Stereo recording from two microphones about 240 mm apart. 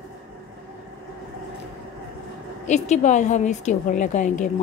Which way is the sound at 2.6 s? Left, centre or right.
Left.